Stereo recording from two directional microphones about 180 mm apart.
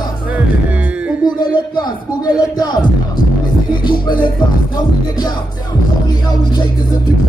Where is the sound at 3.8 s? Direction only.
25° left (ahead or behind).